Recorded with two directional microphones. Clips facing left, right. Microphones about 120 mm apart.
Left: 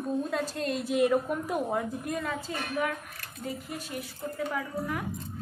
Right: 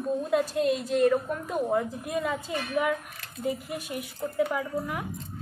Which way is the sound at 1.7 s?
5° right (ahead or behind).